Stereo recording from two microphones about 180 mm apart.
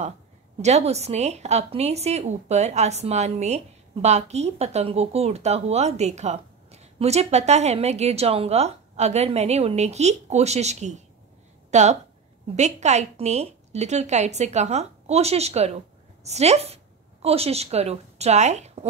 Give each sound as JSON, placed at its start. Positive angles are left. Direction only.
{"t": 0.6, "sound": "a woman's voice", "side_deg": -40}